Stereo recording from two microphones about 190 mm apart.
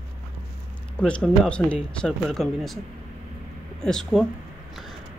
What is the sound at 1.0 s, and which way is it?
Speech, 5° left (ahead or behind).